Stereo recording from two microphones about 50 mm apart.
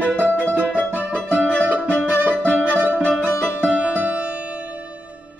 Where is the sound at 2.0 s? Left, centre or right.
Right.